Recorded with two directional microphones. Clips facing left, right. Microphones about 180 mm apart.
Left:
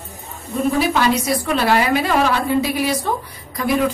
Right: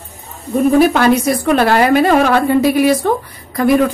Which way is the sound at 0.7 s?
55° right (ahead or behind).